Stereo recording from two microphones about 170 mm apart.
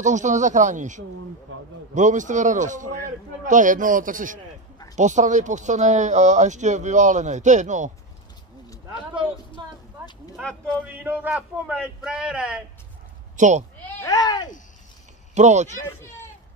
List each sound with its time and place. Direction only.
0.0 s speech: 45° right (ahead or behind)
9.6 s a sound: 30° right (ahead or behind)
10.7 s a man's voice: 10° right (ahead or behind)
13.4 s speech: 45° right (ahead or behind)
13.9 s speech: 20° left (ahead or behind)
15.3 s speech: 45° right (ahead or behind)
15.7 s speech: 15° left (ahead or behind)